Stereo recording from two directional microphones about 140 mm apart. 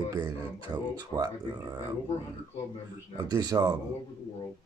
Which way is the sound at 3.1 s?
30° right (ahead or behind).